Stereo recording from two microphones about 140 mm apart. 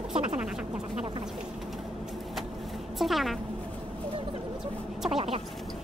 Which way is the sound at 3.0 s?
Centre (ahead or behind).